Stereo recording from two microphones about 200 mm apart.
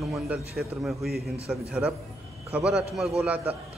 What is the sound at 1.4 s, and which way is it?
A man's voice, 5° right (ahead or behind).